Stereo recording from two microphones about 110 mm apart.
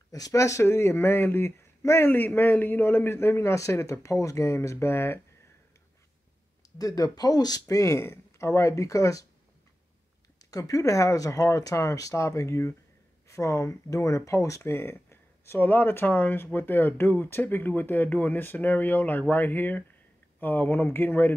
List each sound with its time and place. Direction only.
0.1 s speech: 30° left (ahead or behind)
6.8 s speech: 35° left (ahead or behind)
10.4 s speech: 30° left (ahead or behind)